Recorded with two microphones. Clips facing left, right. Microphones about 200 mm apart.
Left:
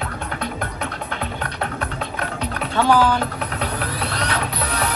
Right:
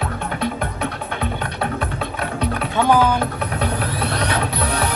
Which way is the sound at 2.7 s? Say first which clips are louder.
Even; 15° right (ahead or behind).